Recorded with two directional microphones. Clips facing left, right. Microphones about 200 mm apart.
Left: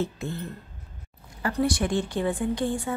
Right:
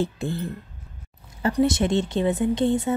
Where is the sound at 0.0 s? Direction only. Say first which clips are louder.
Right 4 dB; 30° right (ahead or behind).